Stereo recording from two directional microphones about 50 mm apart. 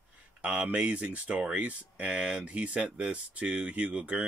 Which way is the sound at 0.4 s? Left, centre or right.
Right.